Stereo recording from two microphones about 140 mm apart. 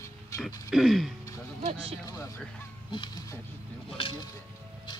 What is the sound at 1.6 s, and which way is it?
Speech, 45° right (ahead or behind).